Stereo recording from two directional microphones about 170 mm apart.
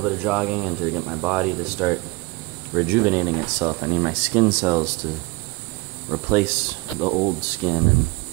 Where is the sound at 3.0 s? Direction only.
15° right (ahead or behind).